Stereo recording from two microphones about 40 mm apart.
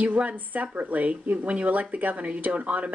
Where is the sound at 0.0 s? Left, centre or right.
Right.